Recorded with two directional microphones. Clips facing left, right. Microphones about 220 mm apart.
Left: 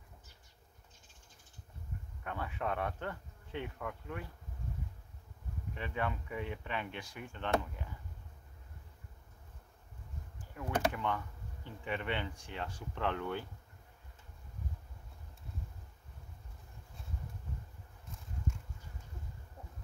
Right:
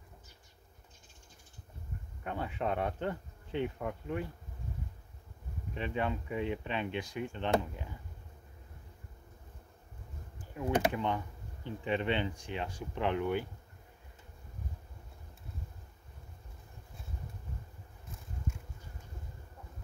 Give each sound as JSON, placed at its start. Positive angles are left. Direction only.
{"t": 2.2, "sound": "speech", "side_deg": -20}
{"t": 5.8, "sound": "speech", "side_deg": -20}
{"t": 10.5, "sound": "speech", "side_deg": -20}